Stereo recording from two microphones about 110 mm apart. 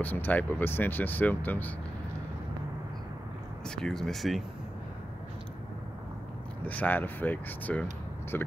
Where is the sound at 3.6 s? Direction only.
5° left (ahead or behind).